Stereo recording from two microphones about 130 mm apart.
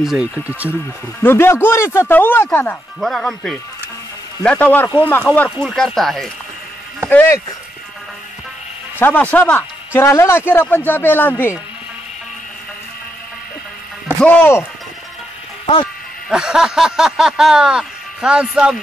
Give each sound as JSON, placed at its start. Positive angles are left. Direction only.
{"t": 0.0, "sound": "speech", "side_deg": -5}
{"t": 1.2, "sound": "a man's voice", "side_deg": 20}
{"t": 3.0, "sound": "a man's voice", "side_deg": 5}
{"t": 5.7, "sound": "speech", "side_deg": 0}
{"t": 7.1, "sound": "a man's voice", "side_deg": 15}
{"t": 9.0, "sound": "a man's voice", "side_deg": 15}
{"t": 14.2, "sound": "a man's voice", "side_deg": 15}
{"t": 16.3, "sound": "speech", "side_deg": -5}